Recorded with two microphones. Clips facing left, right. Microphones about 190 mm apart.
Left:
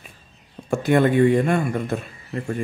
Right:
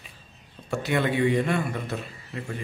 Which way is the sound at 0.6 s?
50° left (ahead or behind).